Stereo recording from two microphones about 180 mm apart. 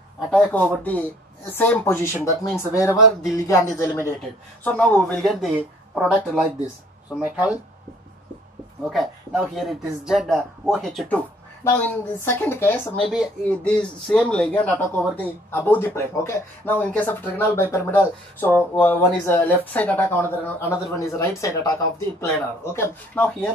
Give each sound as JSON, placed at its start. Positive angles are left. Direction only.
{"t": 0.3, "sound": "speech", "side_deg": 5}
{"t": 8.8, "sound": "speech", "side_deg": 0}
{"t": 13.1, "sound": "speech", "side_deg": 0}